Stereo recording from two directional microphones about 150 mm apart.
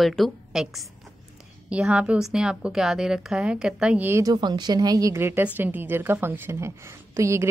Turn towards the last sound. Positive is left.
turn(degrees=-20)  # may be behind; listen again after turning